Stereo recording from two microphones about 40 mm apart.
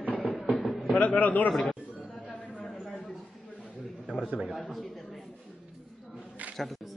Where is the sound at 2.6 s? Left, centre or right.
Centre.